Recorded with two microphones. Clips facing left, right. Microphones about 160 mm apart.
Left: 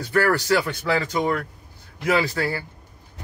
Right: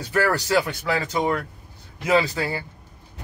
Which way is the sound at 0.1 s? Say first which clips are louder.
Left 1 dB; 20° right (ahead or behind).